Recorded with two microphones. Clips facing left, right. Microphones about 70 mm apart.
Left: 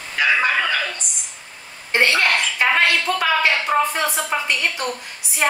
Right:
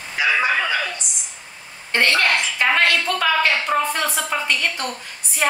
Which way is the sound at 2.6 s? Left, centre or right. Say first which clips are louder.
Even; centre.